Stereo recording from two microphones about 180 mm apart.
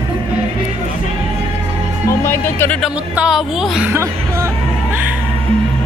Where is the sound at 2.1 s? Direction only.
15° left (ahead or behind).